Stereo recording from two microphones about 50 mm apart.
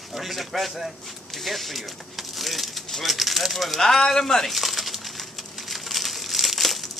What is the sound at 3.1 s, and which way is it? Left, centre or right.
Speech, centre.